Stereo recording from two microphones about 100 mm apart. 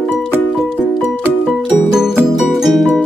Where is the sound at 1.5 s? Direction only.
5° right (ahead or behind).